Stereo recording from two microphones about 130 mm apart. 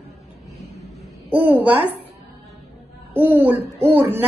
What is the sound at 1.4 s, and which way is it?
Speech, 15° right (ahead or behind).